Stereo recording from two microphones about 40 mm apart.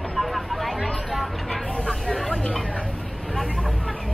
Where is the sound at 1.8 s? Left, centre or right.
Centre.